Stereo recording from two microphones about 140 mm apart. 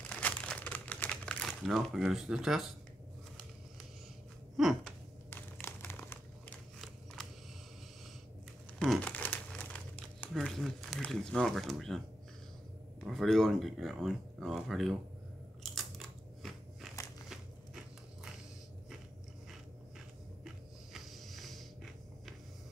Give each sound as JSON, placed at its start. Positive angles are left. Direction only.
{"t": 0.1, "sound": "crumpling", "side_deg": 10}
{"t": 4.6, "sound": "a sound", "side_deg": 0}
{"t": 5.3, "sound": "crumpling", "side_deg": 15}
{"t": 7.2, "sound": "a sound", "side_deg": 5}
{"t": 8.7, "sound": "crumpling", "side_deg": 0}
{"t": 11.0, "sound": "speech", "side_deg": 5}
{"t": 13.0, "sound": "speech", "side_deg": 0}
{"t": 15.6, "sound": "biting", "side_deg": 0}
{"t": 20.4, "sound": "a sound", "side_deg": 0}